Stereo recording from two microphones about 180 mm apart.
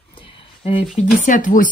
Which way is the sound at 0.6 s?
30° left (ahead or behind).